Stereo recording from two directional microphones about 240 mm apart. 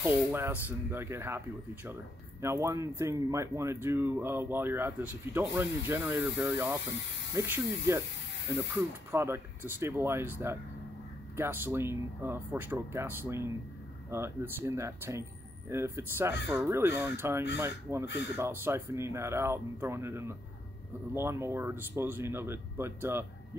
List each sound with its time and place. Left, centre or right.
0.0 s speech: centre
2.4 s speech: centre
18.0 s speech: left
18.3 s speech: centre